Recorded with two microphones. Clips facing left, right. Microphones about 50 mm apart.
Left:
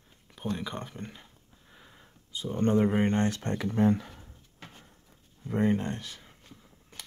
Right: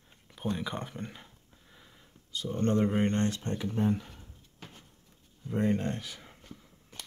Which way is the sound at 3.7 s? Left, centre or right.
Left.